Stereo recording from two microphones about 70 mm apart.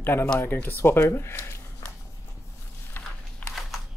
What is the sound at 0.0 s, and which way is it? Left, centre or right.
Speech, left.